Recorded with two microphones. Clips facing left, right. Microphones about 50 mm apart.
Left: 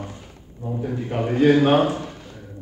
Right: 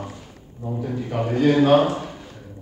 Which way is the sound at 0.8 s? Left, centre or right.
Centre.